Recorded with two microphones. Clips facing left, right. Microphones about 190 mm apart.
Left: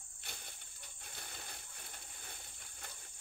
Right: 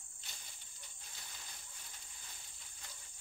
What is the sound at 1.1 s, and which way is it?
Coin, 60° left (ahead or behind).